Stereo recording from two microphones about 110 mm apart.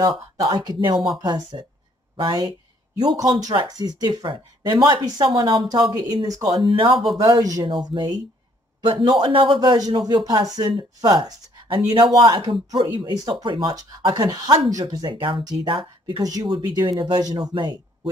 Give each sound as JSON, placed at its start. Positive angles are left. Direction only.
{"t": 0.0, "sound": "a man's voice", "side_deg": -40}
{"t": 5.7, "sound": "a man's voice", "side_deg": -35}
{"t": 14.8, "sound": "speech", "side_deg": -35}
{"t": 15.0, "sound": "a man's voice", "side_deg": -50}
{"t": 16.2, "sound": "speech", "side_deg": -35}
{"t": 16.5, "sound": "a man's voice", "side_deg": -50}
{"t": 16.9, "sound": "speech", "side_deg": -35}